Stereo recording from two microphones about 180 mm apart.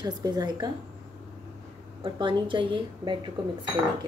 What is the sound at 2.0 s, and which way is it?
A woman's voice, 25° right (ahead or behind).